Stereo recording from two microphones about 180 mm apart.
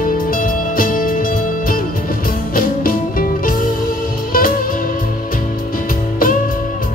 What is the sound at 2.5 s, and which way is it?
Music, 50° left (ahead or behind).